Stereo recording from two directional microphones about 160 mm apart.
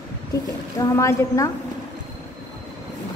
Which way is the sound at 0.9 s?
20° left (ahead or behind).